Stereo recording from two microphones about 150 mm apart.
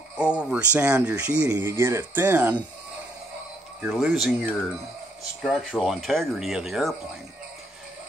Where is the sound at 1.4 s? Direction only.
20° right (ahead or behind).